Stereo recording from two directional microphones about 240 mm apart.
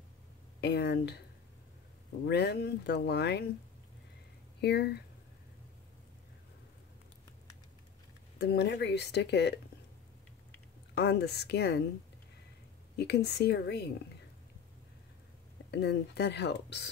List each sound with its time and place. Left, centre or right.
0.6 s speech: left
2.2 s speech: left
4.6 s speech: left
8.4 s speech: left
11.0 s speech: left
12.9 s speech: left
15.7 s speech: left